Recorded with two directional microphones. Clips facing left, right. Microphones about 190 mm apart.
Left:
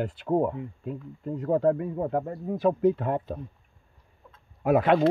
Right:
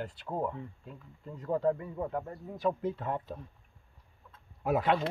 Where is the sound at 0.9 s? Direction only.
55° left (ahead or behind).